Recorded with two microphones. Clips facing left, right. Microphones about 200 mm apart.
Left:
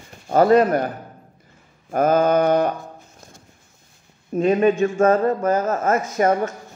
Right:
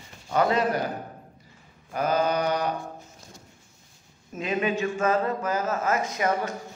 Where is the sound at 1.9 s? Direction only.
50° left (ahead or behind).